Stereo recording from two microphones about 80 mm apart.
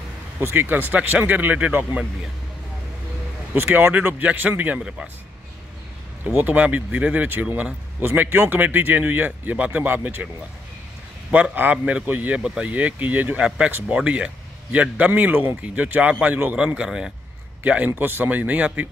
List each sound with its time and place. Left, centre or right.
0.4 s speech: right
3.5 s speech: right
6.3 s speech: right
11.3 s speech: right
17.6 s speech: centre